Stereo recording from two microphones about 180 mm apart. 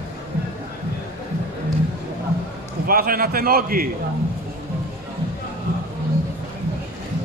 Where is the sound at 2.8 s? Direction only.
55° right (ahead or behind).